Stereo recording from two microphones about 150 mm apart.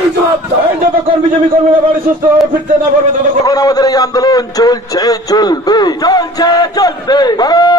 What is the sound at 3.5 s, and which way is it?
A man's voice, 25° left (ahead or behind).